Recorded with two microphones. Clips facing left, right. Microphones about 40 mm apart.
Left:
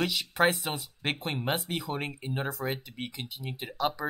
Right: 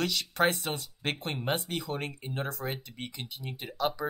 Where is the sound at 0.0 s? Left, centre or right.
Centre.